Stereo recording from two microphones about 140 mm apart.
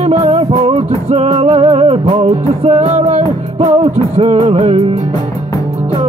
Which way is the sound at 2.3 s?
55° right (ahead or behind).